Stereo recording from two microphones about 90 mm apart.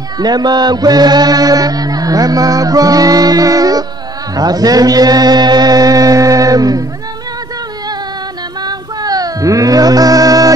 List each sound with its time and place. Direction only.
0.2 s chant: 50° right (ahead or behind)
4.4 s mantra: 45° right (ahead or behind)
8.6 s music: 45° right (ahead or behind)